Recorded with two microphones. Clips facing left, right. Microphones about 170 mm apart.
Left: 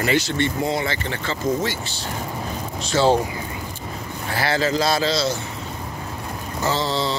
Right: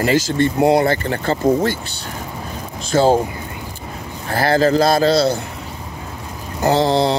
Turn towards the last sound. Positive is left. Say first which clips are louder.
# right 8 dB
turn(degrees=-60)  # may be behind; listen again after turning